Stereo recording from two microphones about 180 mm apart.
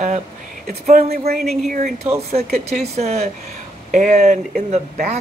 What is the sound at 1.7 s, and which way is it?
Speech, 50° right (ahead or behind).